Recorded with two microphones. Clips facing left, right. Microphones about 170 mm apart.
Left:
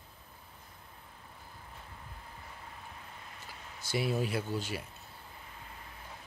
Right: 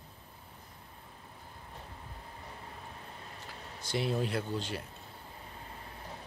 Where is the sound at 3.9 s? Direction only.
5° left (ahead or behind).